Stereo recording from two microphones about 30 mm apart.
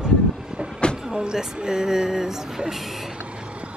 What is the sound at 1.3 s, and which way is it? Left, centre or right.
Speech, right.